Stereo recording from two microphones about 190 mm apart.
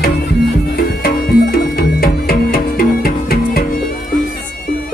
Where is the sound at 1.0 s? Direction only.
55° left (ahead or behind).